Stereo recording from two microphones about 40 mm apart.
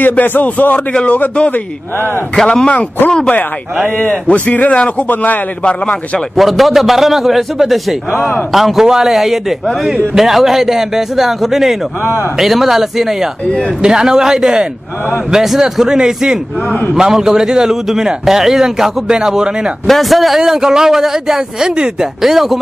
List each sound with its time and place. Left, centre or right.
0.1 s speech: left
2.3 s speech: centre
4.0 s a man's voice: left
5.0 s speech: left
5.6 s speech: left
6.3 s a man's voice: centre
13.8 s a man's voice: centre
15.3 s a man's voice: centre
19.9 s a man's voice: centre